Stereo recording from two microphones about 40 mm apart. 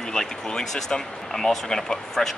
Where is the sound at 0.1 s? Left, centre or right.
Centre.